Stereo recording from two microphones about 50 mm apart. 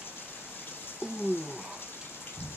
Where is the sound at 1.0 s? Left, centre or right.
Centre.